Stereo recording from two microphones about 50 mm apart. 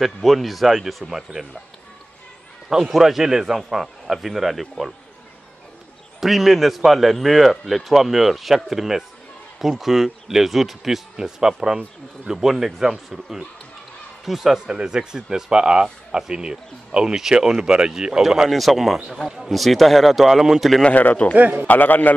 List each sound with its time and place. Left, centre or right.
0.0 s speech: centre
2.7 s speech: centre
6.2 s speech: centre
18.5 s speech: centre
20.8 s a man's voice: left
21.4 s a man's voice: right
21.6 s a man's voice: left